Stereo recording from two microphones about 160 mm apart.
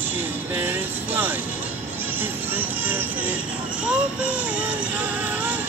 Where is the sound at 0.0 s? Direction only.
10° right (ahead or behind).